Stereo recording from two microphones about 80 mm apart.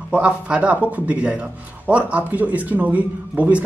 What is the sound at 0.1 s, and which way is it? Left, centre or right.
A man's voice, centre.